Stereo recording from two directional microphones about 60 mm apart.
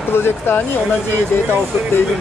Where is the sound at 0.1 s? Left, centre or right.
Left.